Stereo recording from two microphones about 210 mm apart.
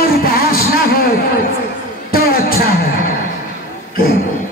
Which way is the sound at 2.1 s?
45° left (ahead or behind).